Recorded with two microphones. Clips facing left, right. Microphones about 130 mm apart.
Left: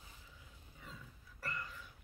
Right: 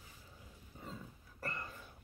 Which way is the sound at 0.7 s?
35° right (ahead or behind).